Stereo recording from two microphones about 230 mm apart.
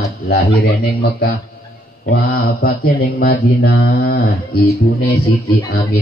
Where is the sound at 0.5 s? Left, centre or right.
Left.